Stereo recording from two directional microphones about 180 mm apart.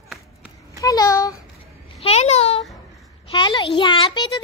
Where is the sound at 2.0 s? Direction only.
35° left (ahead or behind).